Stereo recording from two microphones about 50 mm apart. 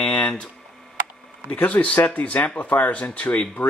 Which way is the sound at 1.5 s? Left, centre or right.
Left.